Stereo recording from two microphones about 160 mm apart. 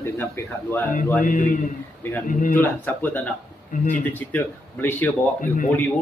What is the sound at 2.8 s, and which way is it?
A man's voice, 10° left (ahead or behind).